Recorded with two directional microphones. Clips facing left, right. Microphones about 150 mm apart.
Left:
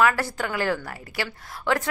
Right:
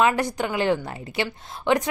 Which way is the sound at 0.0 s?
20° right (ahead or behind).